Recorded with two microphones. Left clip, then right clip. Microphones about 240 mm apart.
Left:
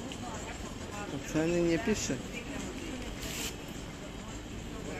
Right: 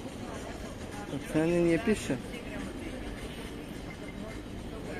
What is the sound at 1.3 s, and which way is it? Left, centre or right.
Speech, centre.